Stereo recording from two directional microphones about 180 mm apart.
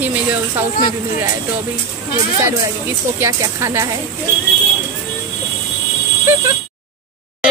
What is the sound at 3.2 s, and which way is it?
Speech, 15° right (ahead or behind).